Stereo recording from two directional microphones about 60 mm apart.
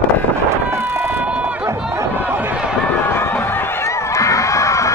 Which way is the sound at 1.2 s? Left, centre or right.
Right.